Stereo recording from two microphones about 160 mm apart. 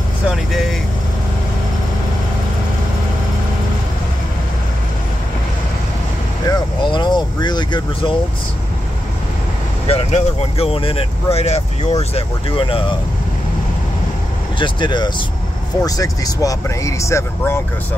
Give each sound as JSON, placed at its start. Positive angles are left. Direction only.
{"t": 0.3, "sound": "speech", "side_deg": 0}
{"t": 6.4, "sound": "vehicle", "side_deg": 25}
{"t": 9.8, "sound": "speech", "side_deg": 40}
{"t": 14.6, "sound": "speech", "side_deg": 30}